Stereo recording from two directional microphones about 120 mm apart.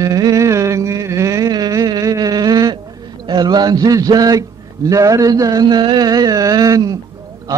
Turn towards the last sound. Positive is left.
turn(degrees=-30)  # may be behind; listen again after turning